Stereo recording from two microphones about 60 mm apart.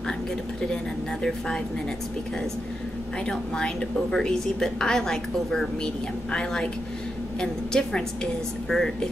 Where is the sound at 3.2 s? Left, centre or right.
Centre.